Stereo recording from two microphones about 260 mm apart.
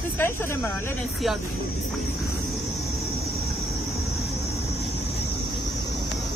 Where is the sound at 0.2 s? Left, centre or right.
Centre.